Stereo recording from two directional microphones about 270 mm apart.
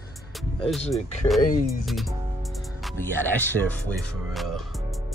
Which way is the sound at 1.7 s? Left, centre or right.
Centre.